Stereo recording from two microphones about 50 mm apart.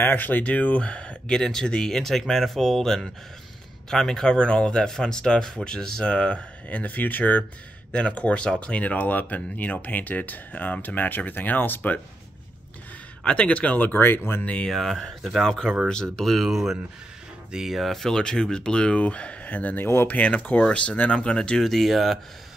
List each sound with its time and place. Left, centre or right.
0.0 s speech: left
0.5 s speech: left
7.9 s speech: left
13.2 s speech: left
13.8 s speech: left
14.4 s speech: left
14.7 s speech: centre
16.3 s speech: centre
21.6 s speech: centre